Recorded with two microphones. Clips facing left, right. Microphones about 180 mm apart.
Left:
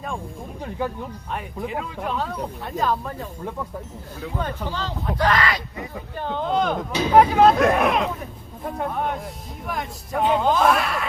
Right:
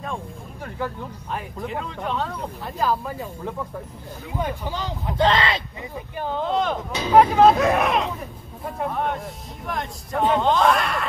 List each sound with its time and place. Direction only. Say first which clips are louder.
0.6 s speech: left 2 dB; 15° left (ahead or behind)
1.3 s speech: left 1 dB; centre (ahead or behind)
4.4 s speech: right 1 dB; 15° right (ahead or behind)
6.1 s speech: even; 5° right (ahead or behind)